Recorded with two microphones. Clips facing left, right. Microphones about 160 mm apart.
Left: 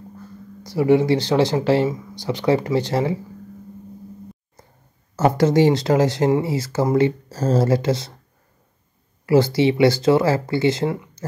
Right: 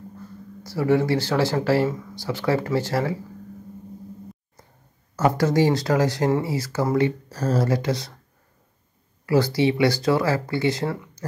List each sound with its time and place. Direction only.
0.7 s speech: 15° left (ahead or behind)
5.1 s speech: 25° left (ahead or behind)
9.2 s speech: 25° left (ahead or behind)